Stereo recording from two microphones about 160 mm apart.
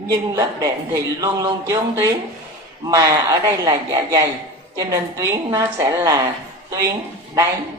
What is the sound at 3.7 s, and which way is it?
A woman's voice, 20° right (ahead or behind).